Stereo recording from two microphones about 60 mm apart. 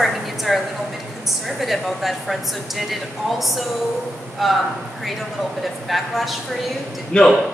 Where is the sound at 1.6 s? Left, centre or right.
Centre.